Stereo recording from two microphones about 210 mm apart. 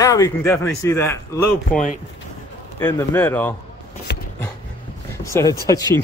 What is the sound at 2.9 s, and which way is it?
Speech, 10° left (ahead or behind).